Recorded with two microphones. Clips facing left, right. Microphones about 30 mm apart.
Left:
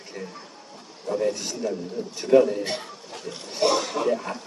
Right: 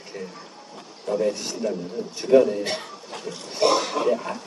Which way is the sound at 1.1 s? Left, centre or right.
Centre.